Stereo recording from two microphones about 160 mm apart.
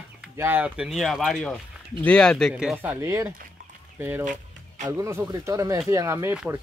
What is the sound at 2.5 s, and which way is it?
Speech, 5° right (ahead or behind).